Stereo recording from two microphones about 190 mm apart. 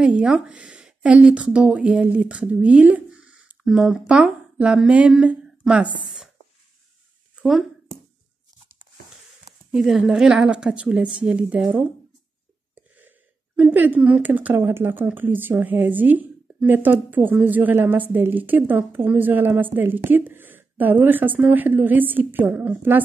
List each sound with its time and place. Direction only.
0.0 s a woman's voice: 5° right (ahead or behind)
7.3 s a sound: centre (ahead or behind)
9.7 s speech: 5° right (ahead or behind)
13.6 s speech: 10° right (ahead or behind)